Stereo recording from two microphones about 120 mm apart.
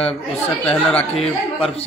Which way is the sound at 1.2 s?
55° left (ahead or behind).